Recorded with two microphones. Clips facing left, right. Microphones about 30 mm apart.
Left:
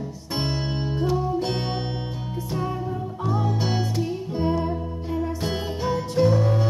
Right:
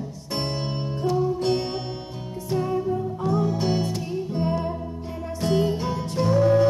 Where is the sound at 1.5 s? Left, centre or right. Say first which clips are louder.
Right 2 dB; left.